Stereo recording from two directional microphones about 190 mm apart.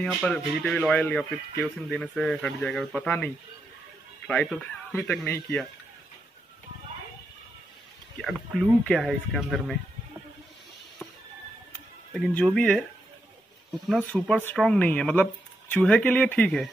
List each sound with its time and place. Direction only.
0.0 s speech: 5° left (ahead or behind)
4.3 s speech: 5° left (ahead or behind)
8.2 s speech: centre (ahead or behind)
12.1 s speech: 5° left (ahead or behind)
13.8 s speech: 5° left (ahead or behind)